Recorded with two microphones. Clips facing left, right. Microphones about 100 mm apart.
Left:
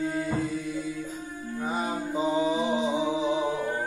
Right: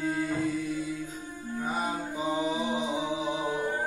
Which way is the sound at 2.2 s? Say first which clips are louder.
Left 5 dB; 25° left (ahead or behind).